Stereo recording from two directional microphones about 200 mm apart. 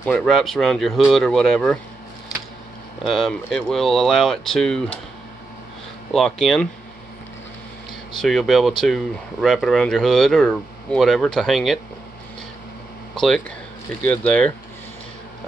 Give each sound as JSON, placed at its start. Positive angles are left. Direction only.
{"t": 0.0, "sound": "speech", "side_deg": 5}
{"t": 3.1, "sound": "speech", "side_deg": 0}
{"t": 6.1, "sound": "speech", "side_deg": 0}
{"t": 8.2, "sound": "speech", "side_deg": 0}
{"t": 13.1, "sound": "a sound", "side_deg": 5}
{"t": 14.0, "sound": "speech", "side_deg": 5}